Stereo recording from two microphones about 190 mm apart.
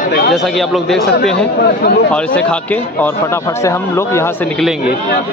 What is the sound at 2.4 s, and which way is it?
Speech, 5° left (ahead or behind).